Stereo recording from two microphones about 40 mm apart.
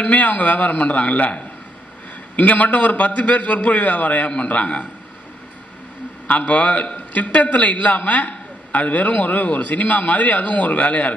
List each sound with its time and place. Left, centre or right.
0.0 s a man's voice: left
6.2 s a man's voice: left